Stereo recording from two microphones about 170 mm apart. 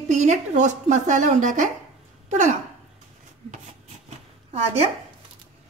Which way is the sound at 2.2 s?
45° right (ahead or behind).